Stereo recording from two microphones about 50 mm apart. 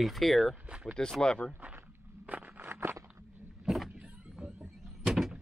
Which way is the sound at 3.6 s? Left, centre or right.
Centre.